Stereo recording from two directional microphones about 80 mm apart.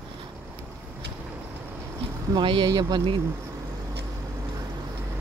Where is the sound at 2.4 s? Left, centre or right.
Right.